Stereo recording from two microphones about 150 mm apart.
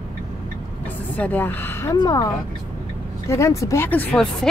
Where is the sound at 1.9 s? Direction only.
25° left (ahead or behind).